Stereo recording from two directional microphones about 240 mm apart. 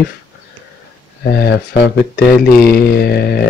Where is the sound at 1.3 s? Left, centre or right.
Left.